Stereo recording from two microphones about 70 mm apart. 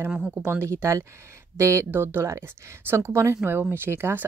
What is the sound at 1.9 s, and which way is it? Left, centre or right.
Speech, right.